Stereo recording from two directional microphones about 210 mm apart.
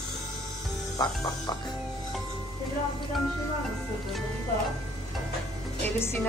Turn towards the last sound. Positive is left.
turn(degrees=10)  # may be behind; listen again after turning